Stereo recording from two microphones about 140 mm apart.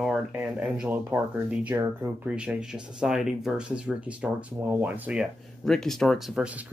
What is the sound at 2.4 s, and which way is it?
Speech, 5° right (ahead or behind).